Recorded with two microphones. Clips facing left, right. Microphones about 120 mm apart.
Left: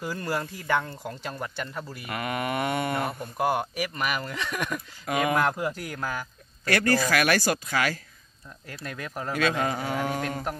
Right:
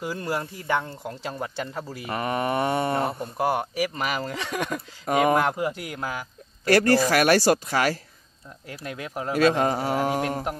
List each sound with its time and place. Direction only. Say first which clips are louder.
0.0 s speech: right 1 dB; 20° right (ahead or behind)
5.5 s speech: right 2 dB; 15° right (ahead or behind)
6.6 s speech: right 5 dB; 35° right (ahead or behind)
8.6 s speech: right 2 dB; 20° right (ahead or behind)
9.3 s speech: right 6 dB; 30° right (ahead or behind)